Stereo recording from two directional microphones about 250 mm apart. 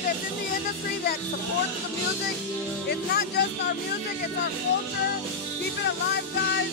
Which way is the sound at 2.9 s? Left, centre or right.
Left.